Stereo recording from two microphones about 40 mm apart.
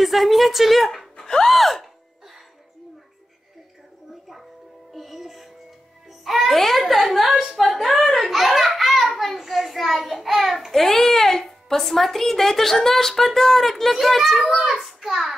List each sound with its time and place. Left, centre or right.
0.0 s a child's voice: centre
1.1 s music: centre
4.9 s music: centre
6.4 s a child's voice: centre
7.7 s a sound: centre
9.1 s child singing: centre
10.7 s a child's voice: centre